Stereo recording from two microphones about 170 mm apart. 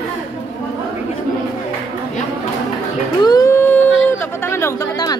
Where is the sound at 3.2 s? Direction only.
20° left (ahead or behind).